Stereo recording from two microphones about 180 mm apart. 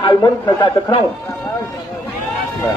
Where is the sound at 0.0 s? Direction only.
20° left (ahead or behind).